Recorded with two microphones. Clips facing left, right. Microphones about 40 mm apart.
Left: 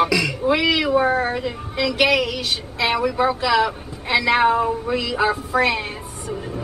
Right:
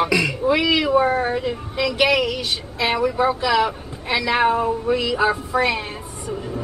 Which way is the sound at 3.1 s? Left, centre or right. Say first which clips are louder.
Even; left.